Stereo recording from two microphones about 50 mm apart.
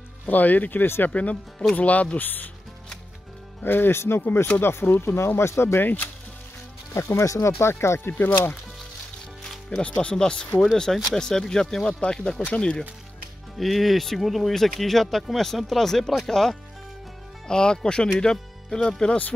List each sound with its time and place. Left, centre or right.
0.3 s speech: left
3.6 s speech: left
5.8 s speech: left
6.9 s speech: left
8.2 s speech: left
9.7 s speech: left
13.6 s speech: centre
17.5 s speech: centre